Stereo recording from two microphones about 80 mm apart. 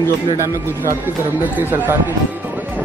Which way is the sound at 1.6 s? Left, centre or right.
Right.